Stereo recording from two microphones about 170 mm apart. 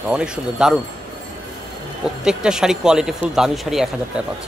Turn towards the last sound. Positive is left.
turn(degrees=0)  # may be behind; listen again after turning